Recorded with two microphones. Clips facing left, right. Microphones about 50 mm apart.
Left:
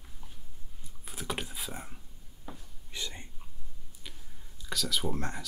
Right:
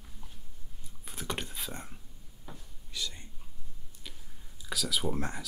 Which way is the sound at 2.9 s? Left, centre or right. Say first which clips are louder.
Even; left.